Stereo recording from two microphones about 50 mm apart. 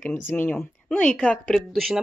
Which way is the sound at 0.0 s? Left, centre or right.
Left.